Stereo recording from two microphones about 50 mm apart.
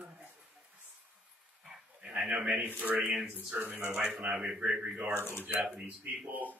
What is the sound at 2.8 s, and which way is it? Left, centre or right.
Speech, right.